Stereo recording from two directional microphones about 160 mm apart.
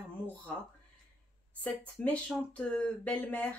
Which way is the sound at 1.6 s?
10° left (ahead or behind).